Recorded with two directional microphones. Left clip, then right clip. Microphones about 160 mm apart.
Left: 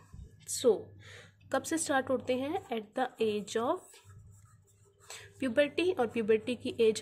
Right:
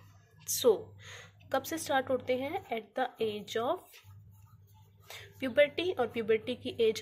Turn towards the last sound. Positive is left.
turn(degrees=40)  # may be behind; listen again after turning